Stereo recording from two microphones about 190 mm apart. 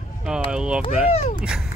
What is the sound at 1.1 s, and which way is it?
Speech, 30° left (ahead or behind).